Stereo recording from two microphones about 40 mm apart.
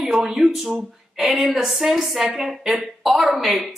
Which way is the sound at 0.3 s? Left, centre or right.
Centre.